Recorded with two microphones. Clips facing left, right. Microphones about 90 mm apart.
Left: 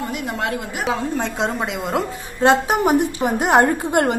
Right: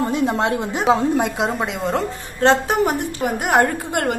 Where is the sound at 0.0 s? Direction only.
30° right (ahead or behind).